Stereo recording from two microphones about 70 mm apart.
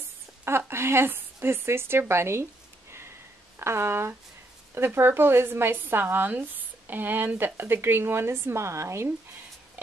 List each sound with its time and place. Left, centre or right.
0.5 s speech: right
3.5 s speech: right